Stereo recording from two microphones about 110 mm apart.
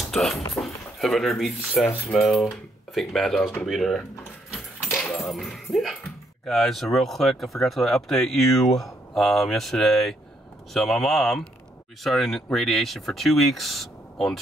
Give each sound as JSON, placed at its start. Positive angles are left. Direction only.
{"t": 0.0, "sound": "speech", "side_deg": 5}
{"t": 5.1, "sound": "speech", "side_deg": 0}